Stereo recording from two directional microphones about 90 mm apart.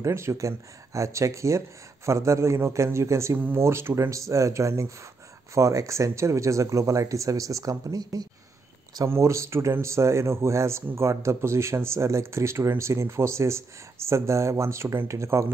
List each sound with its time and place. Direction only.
0.0 s speech: 35° right (ahead or behind)
9.1 s speech: 30° right (ahead or behind)